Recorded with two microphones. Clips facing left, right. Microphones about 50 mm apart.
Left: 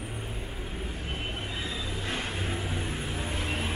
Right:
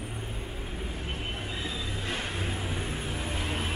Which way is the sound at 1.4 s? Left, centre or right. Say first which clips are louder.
Even; centre.